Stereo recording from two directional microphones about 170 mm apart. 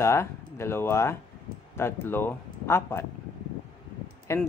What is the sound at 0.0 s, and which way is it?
Speech, 15° left (ahead or behind).